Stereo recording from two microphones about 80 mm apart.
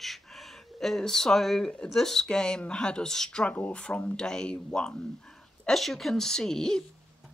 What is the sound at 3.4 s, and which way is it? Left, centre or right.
Speech, centre.